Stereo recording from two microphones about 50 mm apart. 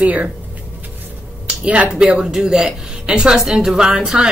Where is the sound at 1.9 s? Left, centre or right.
Centre.